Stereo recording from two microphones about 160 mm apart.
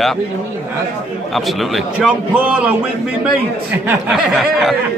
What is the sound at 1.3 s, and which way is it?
A man's voice, centre (ahead or behind).